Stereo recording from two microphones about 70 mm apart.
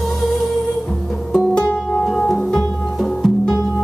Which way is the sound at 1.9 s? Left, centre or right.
Centre.